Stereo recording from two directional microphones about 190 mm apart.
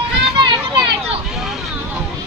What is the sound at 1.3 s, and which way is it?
Hubbub, centre (ahead or behind).